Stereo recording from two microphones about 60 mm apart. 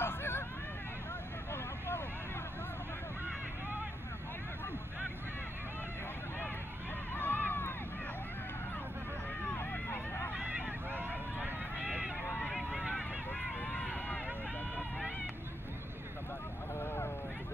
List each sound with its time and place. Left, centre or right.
0.0 s vehicle: left
1.5 s vehicle: left
7.2 s a sound: left
9.6 s run: left
10.9 s vehicle: right
13.6 s run: centre
16.8 s vehicle: left